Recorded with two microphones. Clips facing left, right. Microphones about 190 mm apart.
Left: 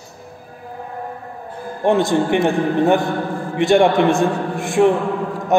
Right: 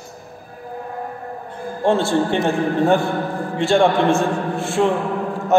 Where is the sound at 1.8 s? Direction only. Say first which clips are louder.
Left 1 dB; 15° left (ahead or behind).